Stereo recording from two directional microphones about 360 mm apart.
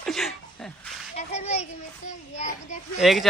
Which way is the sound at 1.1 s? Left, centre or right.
Centre.